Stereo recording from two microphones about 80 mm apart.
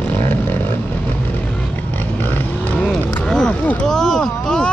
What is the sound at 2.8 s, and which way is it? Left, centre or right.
Vehicle, centre.